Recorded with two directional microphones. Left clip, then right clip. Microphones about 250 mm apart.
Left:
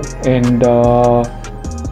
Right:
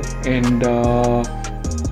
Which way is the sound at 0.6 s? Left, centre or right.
Centre.